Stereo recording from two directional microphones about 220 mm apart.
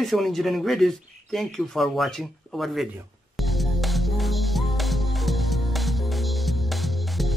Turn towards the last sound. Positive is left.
turn(degrees=0)  # may be behind; listen again after turning